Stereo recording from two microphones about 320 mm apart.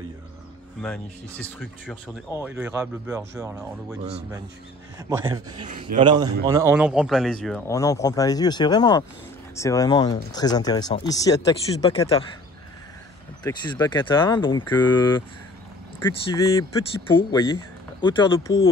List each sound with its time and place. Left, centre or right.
0.8 s speech: centre
2.4 s speech: centre
4.0 s a man's voice: centre
13.4 s speech: centre
16.5 s speech: centre